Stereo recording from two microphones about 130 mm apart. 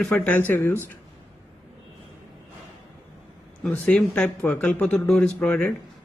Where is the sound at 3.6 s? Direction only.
10° left (ahead or behind).